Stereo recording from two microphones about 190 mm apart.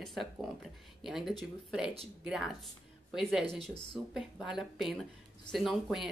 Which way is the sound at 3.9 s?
Centre (ahead or behind).